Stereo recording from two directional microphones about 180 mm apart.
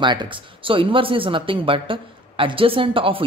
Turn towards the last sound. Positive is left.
turn(degrees=-30)  # may be behind; listen again after turning